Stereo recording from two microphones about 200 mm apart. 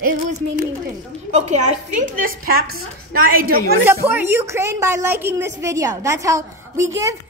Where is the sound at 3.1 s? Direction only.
45° right (ahead or behind).